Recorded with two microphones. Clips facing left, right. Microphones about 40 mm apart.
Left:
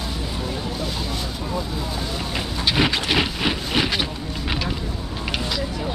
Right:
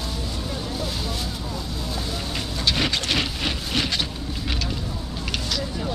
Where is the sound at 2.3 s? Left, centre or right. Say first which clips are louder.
Left 3 dB; centre.